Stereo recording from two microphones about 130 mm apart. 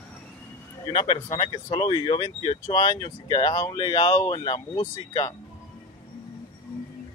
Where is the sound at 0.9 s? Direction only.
40° left (ahead or behind).